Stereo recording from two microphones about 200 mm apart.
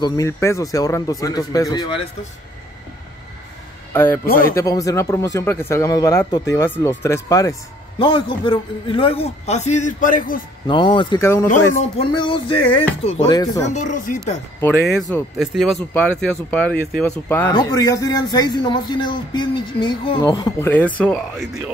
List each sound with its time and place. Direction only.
0.0 s speech: 15° left (ahead or behind)
3.9 s a man's voice: 10° left (ahead or behind); by 10.4 s 45° left (ahead or behind)
10.7 s speech: 25° left (ahead or behind)
12.0 s a man's voice: 25° left (ahead or behind)
13.3 s speech: 20° left (ahead or behind)
13.7 s a man's voice: 35° left (ahead or behind)
15.0 s speech: centre (ahead or behind)
17.5 s speech: 20° left (ahead or behind)
20.7 s speech: 5° left (ahead or behind)